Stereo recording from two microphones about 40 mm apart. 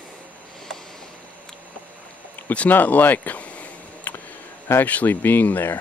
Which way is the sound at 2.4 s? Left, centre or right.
Left.